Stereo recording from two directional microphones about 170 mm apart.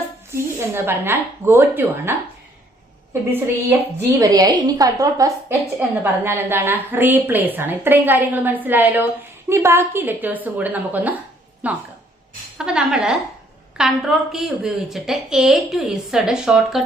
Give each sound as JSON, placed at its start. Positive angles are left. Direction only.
{"t": 0.3, "sound": "a woman's voice", "side_deg": -15}